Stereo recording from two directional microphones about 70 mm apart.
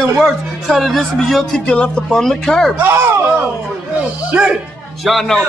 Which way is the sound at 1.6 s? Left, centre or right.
Centre.